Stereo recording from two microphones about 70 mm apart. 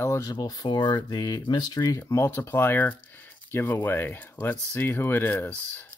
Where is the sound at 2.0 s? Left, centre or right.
Left.